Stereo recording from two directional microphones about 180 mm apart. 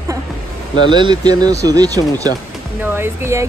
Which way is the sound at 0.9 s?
25° right (ahead or behind).